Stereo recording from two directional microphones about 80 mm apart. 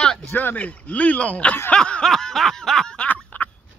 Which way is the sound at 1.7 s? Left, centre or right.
Centre.